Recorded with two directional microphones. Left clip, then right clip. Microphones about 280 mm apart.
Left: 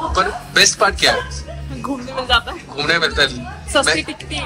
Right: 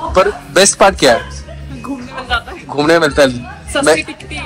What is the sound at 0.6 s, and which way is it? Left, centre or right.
Speech, centre.